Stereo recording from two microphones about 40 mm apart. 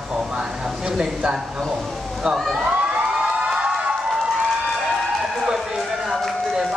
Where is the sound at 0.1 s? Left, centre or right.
Centre.